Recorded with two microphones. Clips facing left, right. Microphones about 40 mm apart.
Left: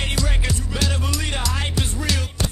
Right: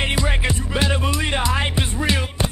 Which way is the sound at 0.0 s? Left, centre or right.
Right.